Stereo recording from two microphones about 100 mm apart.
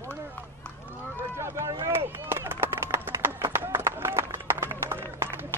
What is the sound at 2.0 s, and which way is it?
Run, 25° right (ahead or behind).